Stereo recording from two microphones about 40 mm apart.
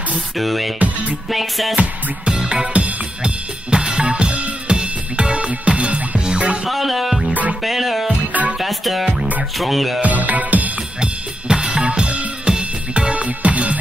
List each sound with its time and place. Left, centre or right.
0.4 s music: centre
0.7 s music: right
1.3 s music: centre
2.2 s music: right
2.7 s music: right
3.7 s drum kit: right
6.2 s music: right
6.7 s music: centre
8.3 s music: right
8.5 s music: centre
10.0 s music: right
11.0 s drum kit: right
12.5 s music: right